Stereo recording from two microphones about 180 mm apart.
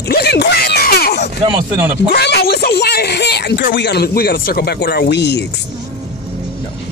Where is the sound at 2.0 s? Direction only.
65° left (ahead or behind).